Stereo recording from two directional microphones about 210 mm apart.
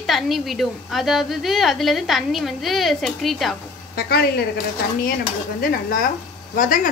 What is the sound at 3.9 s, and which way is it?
Speech, 50° left (ahead or behind).